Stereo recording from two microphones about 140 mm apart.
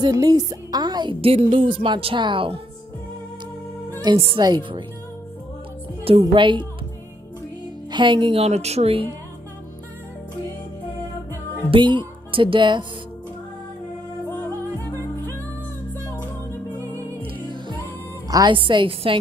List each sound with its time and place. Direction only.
0.0 s a woman's voice: 25° right (ahead or behind)
4.1 s speech: 30° right (ahead or behind)
6.0 s speech: 40° right (ahead or behind)
7.9 s a woman's voice: 35° right (ahead or behind)
11.7 s speech: 35° right (ahead or behind)
14.3 s music: 15° left (ahead or behind)
16.7 s music: 20° right (ahead or behind)
17.3 s music: 35° right (ahead or behind)
18.3 s speech: 35° right (ahead or behind)